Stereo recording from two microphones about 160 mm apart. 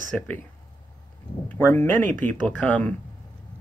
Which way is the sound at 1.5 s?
10° left (ahead or behind).